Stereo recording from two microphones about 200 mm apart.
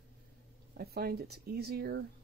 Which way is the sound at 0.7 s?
50° right (ahead or behind).